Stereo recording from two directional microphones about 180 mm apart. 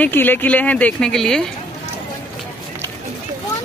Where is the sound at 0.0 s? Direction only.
10° left (ahead or behind).